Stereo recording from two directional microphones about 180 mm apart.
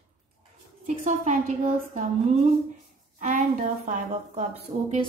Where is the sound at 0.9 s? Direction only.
40° right (ahead or behind).